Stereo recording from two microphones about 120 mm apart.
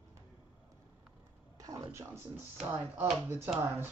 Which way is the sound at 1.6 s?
30° right (ahead or behind).